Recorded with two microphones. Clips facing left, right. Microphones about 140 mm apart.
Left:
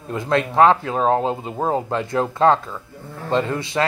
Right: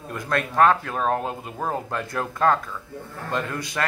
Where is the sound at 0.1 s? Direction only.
20° left (ahead or behind).